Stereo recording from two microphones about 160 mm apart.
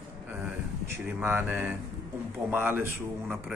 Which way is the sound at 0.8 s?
15° right (ahead or behind).